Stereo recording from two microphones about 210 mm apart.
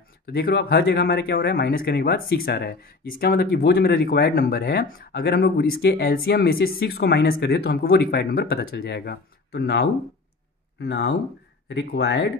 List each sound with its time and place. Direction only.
0.3 s speech: 45° left (ahead or behind)